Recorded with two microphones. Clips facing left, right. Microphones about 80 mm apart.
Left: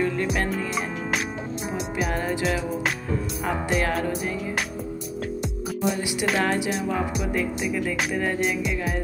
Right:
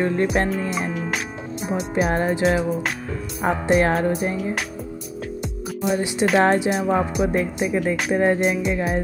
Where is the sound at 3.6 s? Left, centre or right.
Right.